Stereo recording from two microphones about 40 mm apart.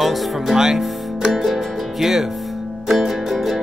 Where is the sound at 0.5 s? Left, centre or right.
Centre.